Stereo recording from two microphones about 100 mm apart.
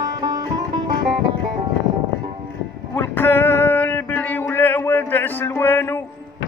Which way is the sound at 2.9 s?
20° left (ahead or behind).